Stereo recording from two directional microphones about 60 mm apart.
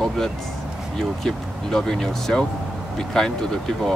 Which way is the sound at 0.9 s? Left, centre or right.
Centre.